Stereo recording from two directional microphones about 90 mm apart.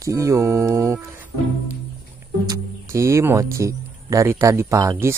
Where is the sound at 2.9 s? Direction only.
30° right (ahead or behind).